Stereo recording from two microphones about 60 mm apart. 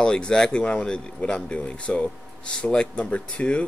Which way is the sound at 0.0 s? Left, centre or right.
Centre.